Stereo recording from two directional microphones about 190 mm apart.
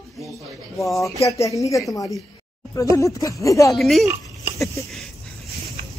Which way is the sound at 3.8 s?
Centre (ahead or behind).